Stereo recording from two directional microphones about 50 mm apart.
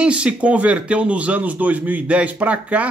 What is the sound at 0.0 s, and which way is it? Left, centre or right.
A man's voice, right.